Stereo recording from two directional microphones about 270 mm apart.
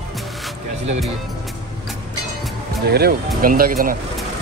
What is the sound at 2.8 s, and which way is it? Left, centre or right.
Speech, right.